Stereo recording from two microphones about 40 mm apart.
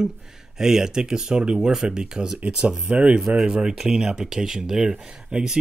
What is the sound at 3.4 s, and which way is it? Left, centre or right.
Speech, centre.